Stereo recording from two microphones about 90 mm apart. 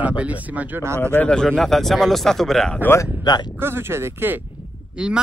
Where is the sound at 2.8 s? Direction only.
30° left (ahead or behind).